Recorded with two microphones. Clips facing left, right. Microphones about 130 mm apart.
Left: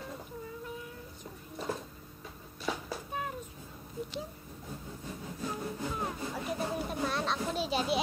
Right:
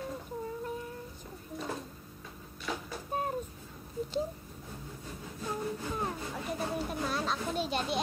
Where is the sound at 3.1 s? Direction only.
40° right (ahead or behind).